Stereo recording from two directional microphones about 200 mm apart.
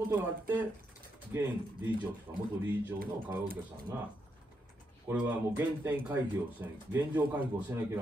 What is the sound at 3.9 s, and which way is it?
Speech, 15° right (ahead or behind).